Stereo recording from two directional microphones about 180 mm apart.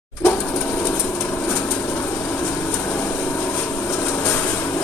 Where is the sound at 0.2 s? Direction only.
15° left (ahead or behind).